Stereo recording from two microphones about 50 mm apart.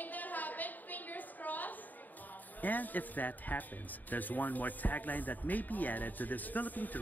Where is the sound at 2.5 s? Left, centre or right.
Left.